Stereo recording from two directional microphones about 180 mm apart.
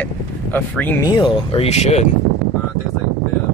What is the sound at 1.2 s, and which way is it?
Speech, 30° left (ahead or behind).